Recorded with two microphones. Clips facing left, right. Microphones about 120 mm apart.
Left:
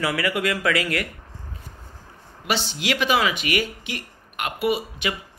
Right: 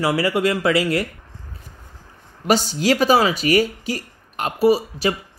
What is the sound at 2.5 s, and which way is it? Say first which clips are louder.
Speech: right 7 dB; 40° right (ahead or behind).